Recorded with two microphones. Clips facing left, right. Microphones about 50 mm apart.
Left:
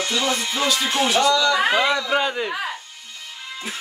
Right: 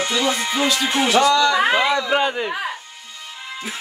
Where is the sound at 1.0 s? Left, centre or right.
Centre.